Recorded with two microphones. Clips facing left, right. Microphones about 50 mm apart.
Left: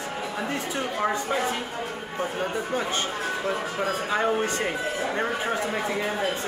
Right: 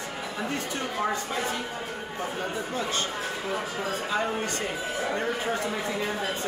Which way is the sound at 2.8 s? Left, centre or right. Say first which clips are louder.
Left 2 dB; left.